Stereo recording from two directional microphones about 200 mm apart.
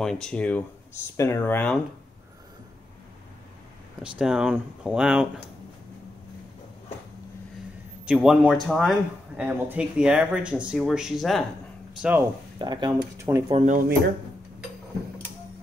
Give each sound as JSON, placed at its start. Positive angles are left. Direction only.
{"t": 0.0, "sound": "speech", "side_deg": 5}
{"t": 4.0, "sound": "speech", "side_deg": -5}
{"t": 8.0, "sound": "speech", "side_deg": -5}
{"t": 12.5, "sound": "speech", "side_deg": -20}
{"t": 13.5, "sound": "speech", "side_deg": -35}